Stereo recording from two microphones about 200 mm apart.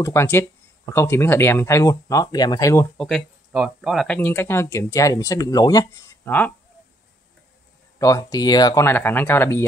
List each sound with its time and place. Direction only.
0.0 s speech: 15° left (ahead or behind)
3.0 s speech: 5° left (ahead or behind)
8.0 s speech: 15° left (ahead or behind)